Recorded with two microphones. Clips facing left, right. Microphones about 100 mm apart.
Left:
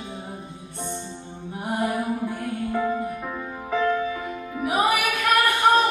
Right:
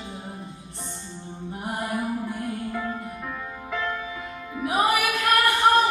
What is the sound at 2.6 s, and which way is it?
Music, 15° left (ahead or behind).